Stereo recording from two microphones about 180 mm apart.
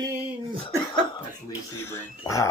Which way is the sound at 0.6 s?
25° left (ahead or behind).